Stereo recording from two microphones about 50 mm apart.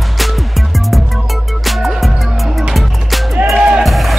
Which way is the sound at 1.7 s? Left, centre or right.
Centre.